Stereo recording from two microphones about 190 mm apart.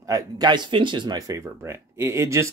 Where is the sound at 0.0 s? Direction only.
20° right (ahead or behind).